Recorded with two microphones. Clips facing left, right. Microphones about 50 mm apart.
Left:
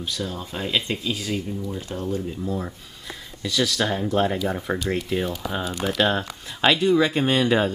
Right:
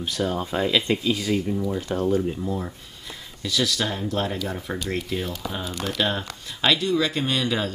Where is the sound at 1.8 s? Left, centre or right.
Right.